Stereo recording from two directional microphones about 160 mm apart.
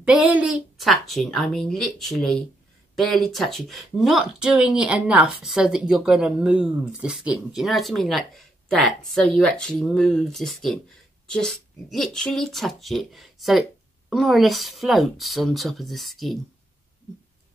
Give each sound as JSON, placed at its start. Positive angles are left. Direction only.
{"t": 0.0, "sound": "speech", "side_deg": -10}